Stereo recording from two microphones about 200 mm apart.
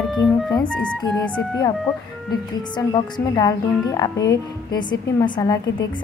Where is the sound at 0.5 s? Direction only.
20° left (ahead or behind).